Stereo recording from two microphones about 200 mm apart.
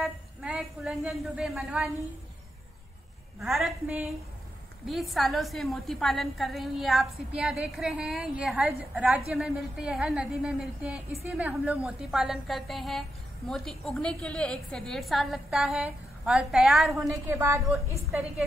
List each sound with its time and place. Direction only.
0.0 s speech: 5° right (ahead or behind)
3.3 s a woman's voice: centre (ahead or behind)
5.1 s a woman's voice: centre (ahead or behind)
17.1 s a woman's voice: 15° right (ahead or behind)